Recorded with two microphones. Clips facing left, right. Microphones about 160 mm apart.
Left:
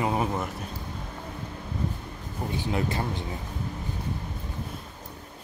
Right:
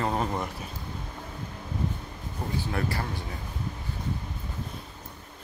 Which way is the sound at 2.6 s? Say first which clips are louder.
Left 4 dB; 20° left (ahead or behind).